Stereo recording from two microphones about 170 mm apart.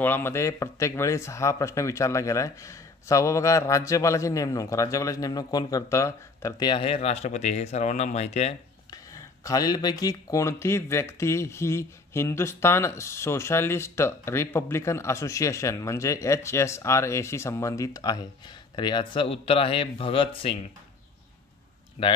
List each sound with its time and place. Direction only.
0.0 s speech: 15° left (ahead or behind); by 8.5 s 40° left (ahead or behind)
8.9 s speech: 20° left (ahead or behind)
22.0 s speech: 35° left (ahead or behind)